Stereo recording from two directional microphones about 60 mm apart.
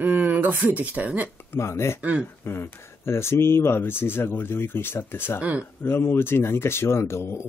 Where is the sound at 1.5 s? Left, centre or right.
Left.